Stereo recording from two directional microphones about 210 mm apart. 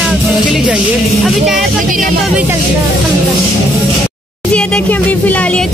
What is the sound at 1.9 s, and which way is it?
Speech, 40° right (ahead or behind).